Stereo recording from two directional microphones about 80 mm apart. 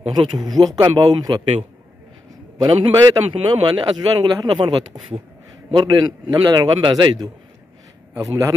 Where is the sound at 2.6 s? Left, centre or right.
Right.